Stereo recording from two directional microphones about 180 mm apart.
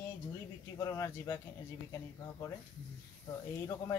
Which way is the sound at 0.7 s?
15° left (ahead or behind).